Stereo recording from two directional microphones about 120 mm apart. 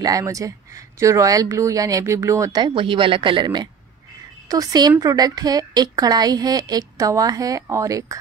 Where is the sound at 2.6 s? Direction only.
40° right (ahead or behind).